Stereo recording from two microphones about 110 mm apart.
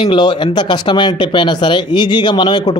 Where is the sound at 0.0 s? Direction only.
45° left (ahead or behind).